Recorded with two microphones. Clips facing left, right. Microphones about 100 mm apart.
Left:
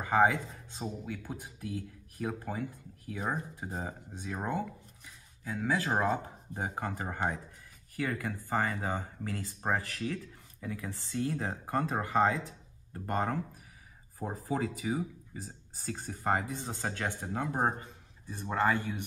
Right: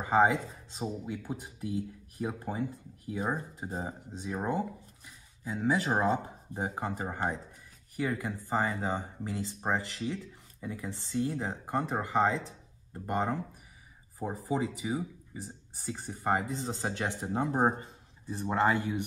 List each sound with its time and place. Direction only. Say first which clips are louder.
0.0 s speech: right 1 dB; 20° right (ahead or behind)
4.6 s a sound: right 2 dB; 15° right (ahead or behind)
5.9 s speech: right 2 dB; 15° right (ahead or behind)
16.4 s speech: right 3 dB; 30° right (ahead or behind)
18.2 s speech: right 2 dB; 30° right (ahead or behind)